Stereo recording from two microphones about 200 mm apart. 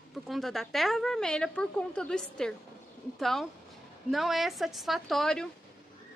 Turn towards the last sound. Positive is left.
turn(degrees=0)  # may be behind; listen again after turning